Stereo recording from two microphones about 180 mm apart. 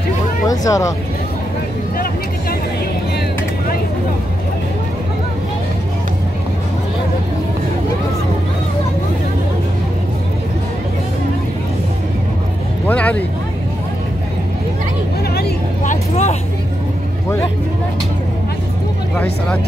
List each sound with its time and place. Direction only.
0.5 s speech: 20° left (ahead or behind)
12.8 s speech: 5° left (ahead or behind)
15.3 s vehicle: 55° left (ahead or behind)